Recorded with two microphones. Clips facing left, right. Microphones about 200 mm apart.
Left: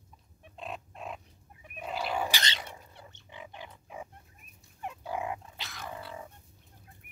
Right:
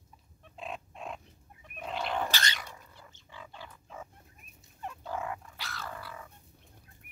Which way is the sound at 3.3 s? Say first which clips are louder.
Left 2 dB; 20° left (ahead or behind).